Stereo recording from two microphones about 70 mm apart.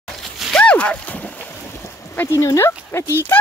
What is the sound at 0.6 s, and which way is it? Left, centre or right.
Splash, centre.